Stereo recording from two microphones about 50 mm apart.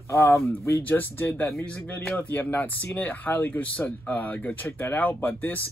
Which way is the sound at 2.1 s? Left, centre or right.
Left.